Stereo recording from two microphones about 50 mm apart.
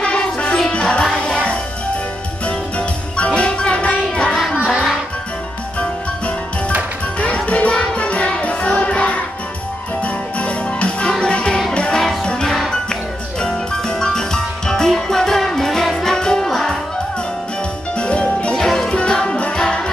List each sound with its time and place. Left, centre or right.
0.0 s music: left
3.3 s music: centre
7.2 s music: left; by 16.7 s centre
17.9 s music: left
18.5 s music: centre
18.9 s music: centre